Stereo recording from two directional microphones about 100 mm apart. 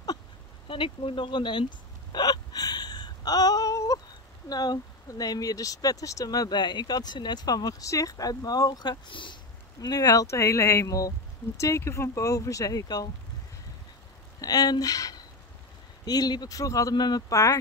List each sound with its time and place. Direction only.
0.7 s speech: 60° left (ahead or behind)
2.1 s hiccup: 45° left (ahead or behind)
4.5 s speech: 40° left (ahead or behind)
9.8 s speech: 40° left (ahead or behind)
14.4 s speech: 40° left (ahead or behind)